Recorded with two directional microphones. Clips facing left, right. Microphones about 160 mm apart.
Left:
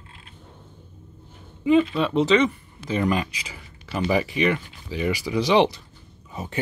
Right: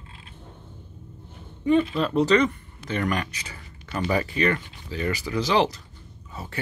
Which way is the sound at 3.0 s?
15° left (ahead or behind).